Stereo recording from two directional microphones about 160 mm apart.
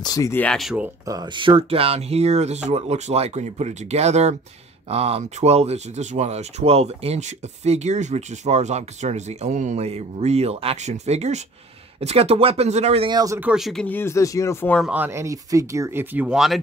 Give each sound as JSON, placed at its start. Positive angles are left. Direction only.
{"t": 0.0, "sound": "speech", "side_deg": 20}
{"t": 1.0, "sound": "speech", "side_deg": -25}
{"t": 13.1, "sound": "speech", "side_deg": -20}
{"t": 13.4, "sound": "speech", "side_deg": -5}
{"t": 13.8, "sound": "speech", "side_deg": 15}
{"t": 14.8, "sound": "speech", "side_deg": -10}